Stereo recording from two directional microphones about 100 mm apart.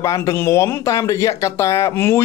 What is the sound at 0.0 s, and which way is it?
Speech, 30° left (ahead or behind).